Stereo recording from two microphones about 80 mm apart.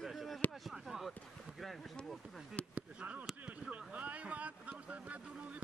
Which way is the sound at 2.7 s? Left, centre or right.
Centre.